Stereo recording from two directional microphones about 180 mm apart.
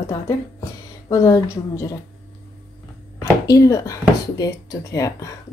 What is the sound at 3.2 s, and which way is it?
A woman's voice, 20° left (ahead or behind).